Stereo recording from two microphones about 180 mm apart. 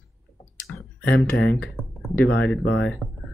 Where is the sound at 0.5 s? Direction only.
10° left (ahead or behind).